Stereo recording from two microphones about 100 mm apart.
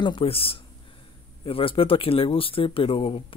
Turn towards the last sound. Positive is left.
turn(degrees=65)  # may be behind; listen again after turning